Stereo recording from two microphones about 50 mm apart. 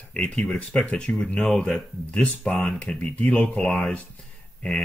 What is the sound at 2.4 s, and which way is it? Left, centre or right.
Speech, centre.